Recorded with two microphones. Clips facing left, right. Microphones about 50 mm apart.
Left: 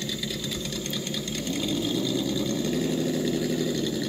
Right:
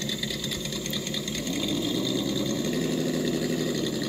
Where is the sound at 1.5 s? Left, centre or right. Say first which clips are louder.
Left 1 dB; right.